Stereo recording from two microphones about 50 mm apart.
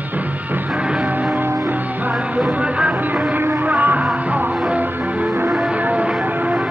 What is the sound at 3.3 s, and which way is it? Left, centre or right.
Music, right.